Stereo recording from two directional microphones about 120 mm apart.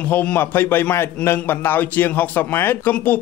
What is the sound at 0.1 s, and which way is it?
A man's voice, 15° left (ahead or behind).